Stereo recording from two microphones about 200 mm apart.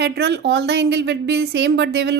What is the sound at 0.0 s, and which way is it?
A woman's voice, 55° right (ahead or behind).